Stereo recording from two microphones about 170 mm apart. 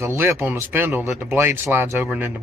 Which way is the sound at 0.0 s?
15° right (ahead or behind).